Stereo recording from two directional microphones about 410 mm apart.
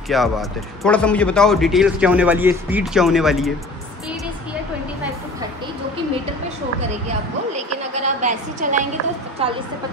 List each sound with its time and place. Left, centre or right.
0.1 s speech: centre
7.5 s a sound: centre
9.4 s speech: centre